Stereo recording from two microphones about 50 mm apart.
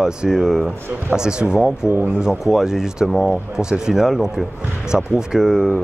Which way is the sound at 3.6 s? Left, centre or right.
Centre.